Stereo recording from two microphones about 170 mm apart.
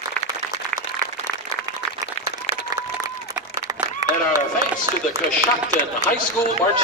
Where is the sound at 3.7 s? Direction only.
20° right (ahead or behind).